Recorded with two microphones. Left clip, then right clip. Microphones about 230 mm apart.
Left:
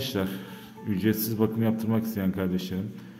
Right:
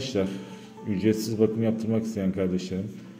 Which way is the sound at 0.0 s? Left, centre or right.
Centre.